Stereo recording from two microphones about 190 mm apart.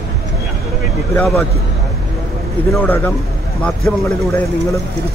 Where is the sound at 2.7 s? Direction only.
10° left (ahead or behind).